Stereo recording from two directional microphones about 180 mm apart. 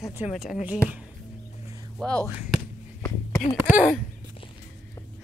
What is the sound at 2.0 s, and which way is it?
Speech, 5° left (ahead or behind).